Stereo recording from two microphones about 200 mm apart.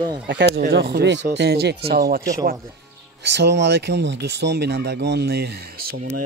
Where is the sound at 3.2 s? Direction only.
60° right (ahead or behind).